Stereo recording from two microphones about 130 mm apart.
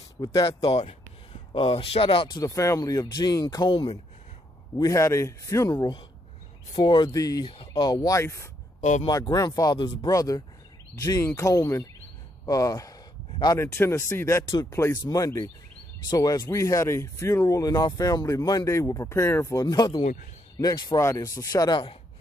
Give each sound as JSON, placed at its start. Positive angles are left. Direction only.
{"t": 0.2, "sound": "speech", "side_deg": 30}
{"t": 0.7, "sound": "speech", "side_deg": 45}
{"t": 4.7, "sound": "speech", "side_deg": 25}
{"t": 6.7, "sound": "speech", "side_deg": 35}
{"t": 7.4, "sound": "speech", "side_deg": 40}
{"t": 9.0, "sound": "speech", "side_deg": 30}